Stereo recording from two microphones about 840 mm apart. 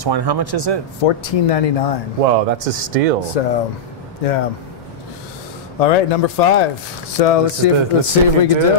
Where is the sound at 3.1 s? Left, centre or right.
Left.